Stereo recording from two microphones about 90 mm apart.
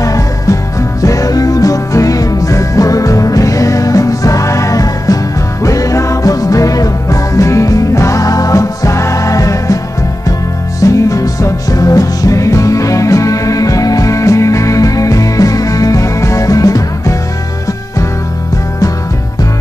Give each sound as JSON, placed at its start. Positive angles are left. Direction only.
{"t": 0.0, "sound": "music", "side_deg": 40}
{"t": 10.8, "sound": "music", "side_deg": 40}